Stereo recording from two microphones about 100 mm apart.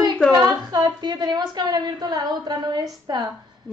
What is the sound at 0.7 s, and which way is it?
A woman's voice, 45° right (ahead or behind).